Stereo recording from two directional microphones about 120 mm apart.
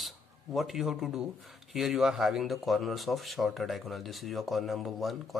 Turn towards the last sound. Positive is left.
turn(degrees=0)  # may be behind; listen again after turning